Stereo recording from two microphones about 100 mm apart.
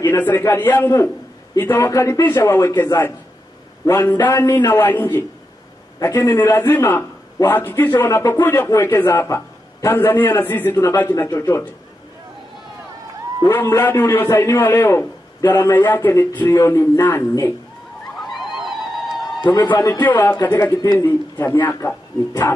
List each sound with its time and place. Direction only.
0.0 s a man's voice: 20° left (ahead or behind); by 4.1 s 35° left (ahead or behind)
4.3 s a sound: 30° left (ahead or behind)
4.7 s a man's voice: 20° left (ahead or behind)
5.9 s a man's voice: 30° left (ahead or behind)
11.1 s a sound: 35° left (ahead or behind)
13.5 s a man's voice: 25° left (ahead or behind)
16.4 s a sound: 30° left (ahead or behind)
17.0 s a man's voice: 25° left (ahead or behind)
18.3 s neigh: centre (ahead or behind)
19.4 s a man's voice: 45° left (ahead or behind)
20.0 s speech: 15° left (ahead or behind)
20.5 s a man's voice: 30° left (ahead or behind)